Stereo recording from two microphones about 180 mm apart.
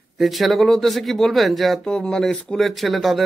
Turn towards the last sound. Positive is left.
turn(degrees=0)  # may be behind; listen again after turning